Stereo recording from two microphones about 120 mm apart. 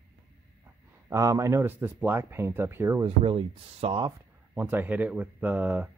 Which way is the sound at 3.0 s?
50° right (ahead or behind).